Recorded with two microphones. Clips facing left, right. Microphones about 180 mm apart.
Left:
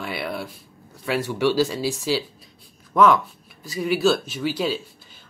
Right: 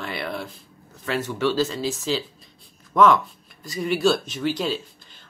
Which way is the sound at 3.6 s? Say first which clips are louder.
Left 1 dB; 5° left (ahead or behind).